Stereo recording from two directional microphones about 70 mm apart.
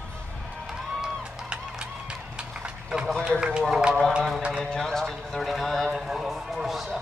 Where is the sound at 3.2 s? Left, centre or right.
Centre.